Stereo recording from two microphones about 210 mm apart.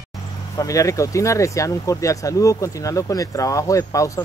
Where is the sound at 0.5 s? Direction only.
15° left (ahead or behind).